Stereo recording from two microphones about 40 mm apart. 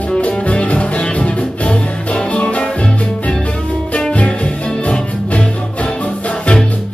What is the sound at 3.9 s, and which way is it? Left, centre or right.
Music, left.